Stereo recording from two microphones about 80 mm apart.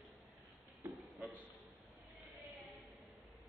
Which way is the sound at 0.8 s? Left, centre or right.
Right.